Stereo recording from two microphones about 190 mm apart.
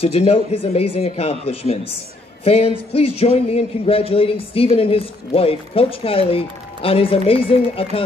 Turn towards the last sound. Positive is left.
turn(degrees=30)  # may be behind; listen again after turning